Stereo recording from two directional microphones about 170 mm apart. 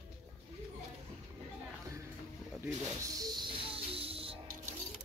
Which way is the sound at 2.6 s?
20° right (ahead or behind).